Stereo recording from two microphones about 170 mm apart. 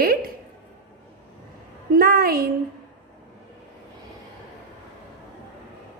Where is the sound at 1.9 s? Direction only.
60° right (ahead or behind).